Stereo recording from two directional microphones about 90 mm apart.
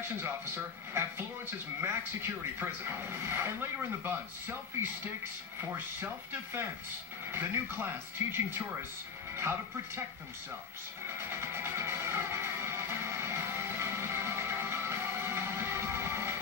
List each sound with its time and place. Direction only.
1.8 s speech: 30° right (ahead or behind)
11.1 s music: 30° right (ahead or behind)